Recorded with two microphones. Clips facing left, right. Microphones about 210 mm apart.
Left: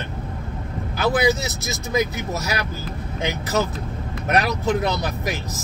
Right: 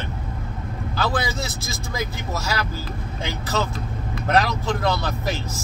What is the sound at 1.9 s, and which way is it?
Speech, 15° left (ahead or behind).